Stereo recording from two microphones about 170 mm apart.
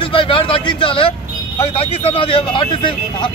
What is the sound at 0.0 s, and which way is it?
Vehicle, 30° left (ahead or behind).